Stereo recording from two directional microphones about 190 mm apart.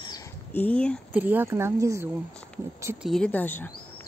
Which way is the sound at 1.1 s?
10° right (ahead or behind).